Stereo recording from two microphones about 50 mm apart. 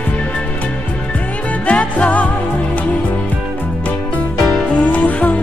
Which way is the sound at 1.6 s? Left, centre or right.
Left.